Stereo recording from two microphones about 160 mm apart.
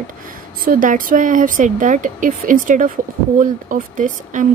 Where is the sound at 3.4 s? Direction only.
55° right (ahead or behind).